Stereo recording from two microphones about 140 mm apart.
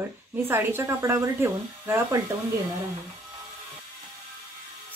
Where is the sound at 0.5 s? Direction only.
15° right (ahead or behind).